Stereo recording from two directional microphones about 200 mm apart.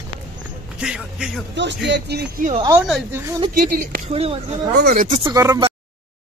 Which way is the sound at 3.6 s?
45° right (ahead or behind).